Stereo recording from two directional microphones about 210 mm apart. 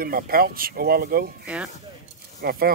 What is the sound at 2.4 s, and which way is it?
Speech, 45° right (ahead or behind).